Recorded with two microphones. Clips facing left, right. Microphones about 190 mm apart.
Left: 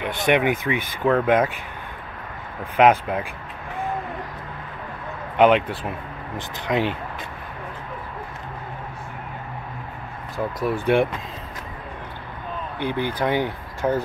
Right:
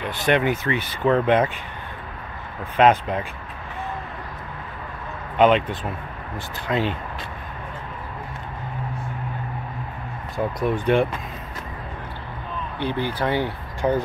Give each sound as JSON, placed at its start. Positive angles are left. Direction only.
{"t": 0.0, "sound": "speech", "side_deg": 15}
{"t": 2.8, "sound": "speech", "side_deg": 10}
{"t": 5.4, "sound": "speech", "side_deg": 10}
{"t": 10.3, "sound": "speech", "side_deg": 5}
{"t": 12.7, "sound": "speech", "side_deg": 15}
{"t": 13.8, "sound": "speech", "side_deg": 0}